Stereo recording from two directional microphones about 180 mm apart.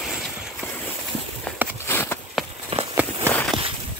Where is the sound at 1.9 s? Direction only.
15° left (ahead or behind).